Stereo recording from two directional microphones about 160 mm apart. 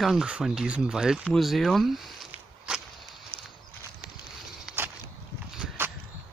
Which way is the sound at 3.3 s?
10° left (ahead or behind).